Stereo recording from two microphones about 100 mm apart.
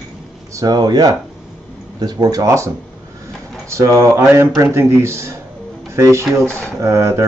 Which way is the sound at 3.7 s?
30° right (ahead or behind).